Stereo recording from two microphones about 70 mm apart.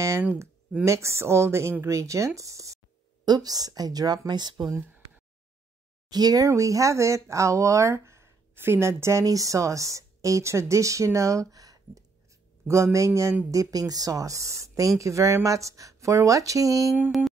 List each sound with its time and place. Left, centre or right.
0.8 s speech: right
3.3 s speech: right
4.3 s speech: right
6.0 s speech: right
12.6 s speech: right
13.5 s speech: right